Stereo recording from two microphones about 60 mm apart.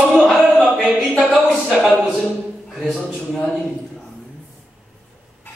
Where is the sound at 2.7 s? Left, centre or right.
Centre.